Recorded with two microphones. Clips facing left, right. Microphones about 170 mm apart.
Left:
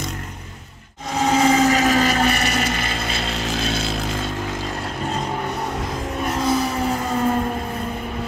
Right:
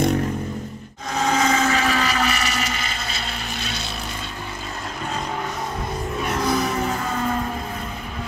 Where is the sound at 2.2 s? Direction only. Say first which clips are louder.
Left 4 dB; 55° left (ahead or behind).